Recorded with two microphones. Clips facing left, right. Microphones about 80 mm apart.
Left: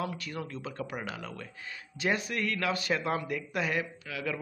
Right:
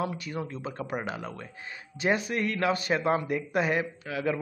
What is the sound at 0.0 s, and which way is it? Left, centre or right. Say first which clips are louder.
A man's voice: right 4 dB; centre.